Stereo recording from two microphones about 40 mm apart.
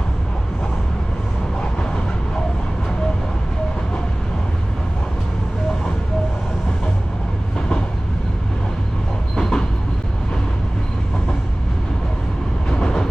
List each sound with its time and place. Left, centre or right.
9.3 s train: centre
12.6 s train: centre